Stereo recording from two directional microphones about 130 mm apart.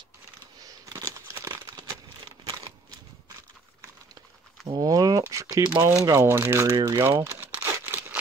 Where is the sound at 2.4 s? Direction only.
35° right (ahead or behind).